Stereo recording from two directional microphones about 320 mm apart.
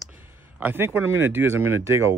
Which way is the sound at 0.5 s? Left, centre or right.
Centre.